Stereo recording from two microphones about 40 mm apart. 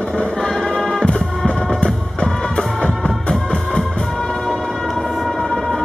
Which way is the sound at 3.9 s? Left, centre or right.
Centre.